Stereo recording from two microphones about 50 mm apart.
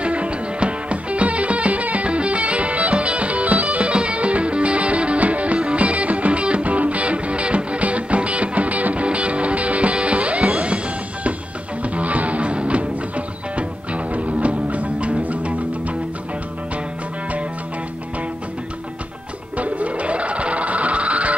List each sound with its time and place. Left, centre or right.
0.0 s music: right
11.8 s music: right
19.5 s music: right